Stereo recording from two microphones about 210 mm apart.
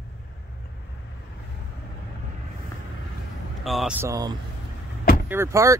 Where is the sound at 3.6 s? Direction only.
Centre (ahead or behind).